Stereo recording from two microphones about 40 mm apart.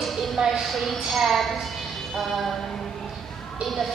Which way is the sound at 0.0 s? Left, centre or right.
Centre.